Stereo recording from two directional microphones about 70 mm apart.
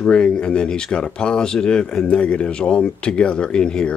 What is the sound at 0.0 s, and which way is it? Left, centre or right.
Speech, centre.